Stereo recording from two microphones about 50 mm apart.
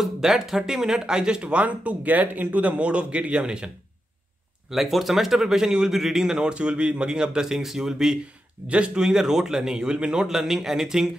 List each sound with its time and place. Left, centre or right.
0.0 s speech: centre
4.6 s speech: centre
8.6 s speech: right
10.2 s speech: centre